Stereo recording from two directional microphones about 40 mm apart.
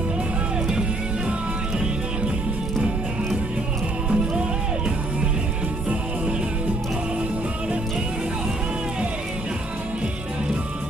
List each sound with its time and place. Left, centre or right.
0.7 s music: centre
4.1 s music: right